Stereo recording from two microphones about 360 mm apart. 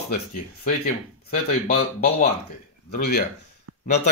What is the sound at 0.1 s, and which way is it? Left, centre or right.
Speech, left.